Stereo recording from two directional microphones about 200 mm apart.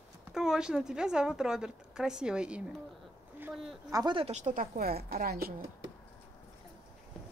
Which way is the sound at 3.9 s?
20° right (ahead or behind).